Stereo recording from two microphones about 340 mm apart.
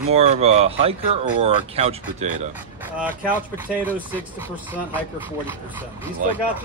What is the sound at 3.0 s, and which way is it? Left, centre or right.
Speech, centre.